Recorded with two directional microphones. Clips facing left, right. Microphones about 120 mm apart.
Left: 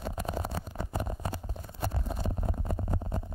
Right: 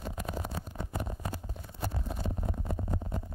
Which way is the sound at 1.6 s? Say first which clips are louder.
Left 2 dB; 45° left (ahead or behind).